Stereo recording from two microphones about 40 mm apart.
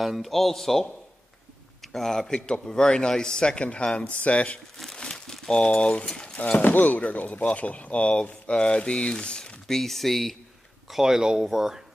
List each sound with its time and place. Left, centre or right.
0.0 s speech: centre
0.3 s speech: centre
1.9 s speech: centre; by 4.6 s left
5.1 s crumpling: centre
5.5 s speech: left
6.6 s speech: left
9.7 s speech: centre
10.9 s speech: centre